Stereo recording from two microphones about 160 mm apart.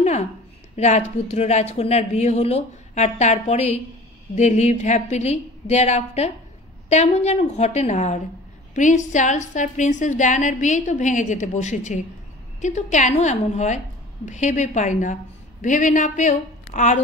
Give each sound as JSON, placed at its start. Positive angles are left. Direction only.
{"t": 0.7, "sound": "a woman's voice", "side_deg": 45}